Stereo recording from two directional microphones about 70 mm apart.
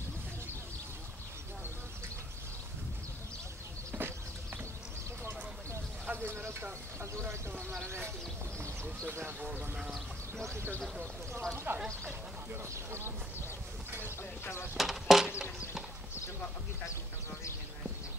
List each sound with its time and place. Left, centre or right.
3.9 s a sound: right
6.0 s a sound: right
7.8 s speech: right
9.4 s speech: right
9.8 s speech: centre
11.7 s speech: right
12.7 s speech: right
14.4 s speech: left
14.8 s a sound: centre